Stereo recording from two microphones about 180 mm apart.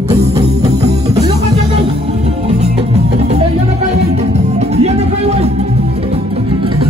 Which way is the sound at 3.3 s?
35° right (ahead or behind).